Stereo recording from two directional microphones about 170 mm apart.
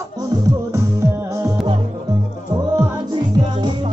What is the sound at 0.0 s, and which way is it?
Music, 25° right (ahead or behind).